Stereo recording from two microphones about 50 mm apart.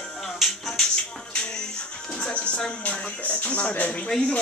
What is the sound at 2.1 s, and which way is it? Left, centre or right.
Speech, left.